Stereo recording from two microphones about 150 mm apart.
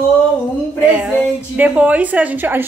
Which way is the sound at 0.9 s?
10° right (ahead or behind).